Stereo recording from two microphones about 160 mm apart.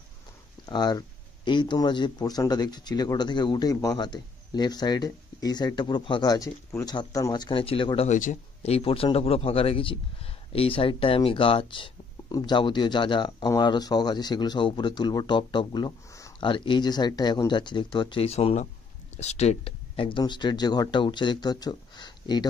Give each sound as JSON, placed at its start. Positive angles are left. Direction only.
{"t": 0.7, "sound": "speech", "side_deg": 25}
{"t": 16.3, "sound": "speech", "side_deg": 30}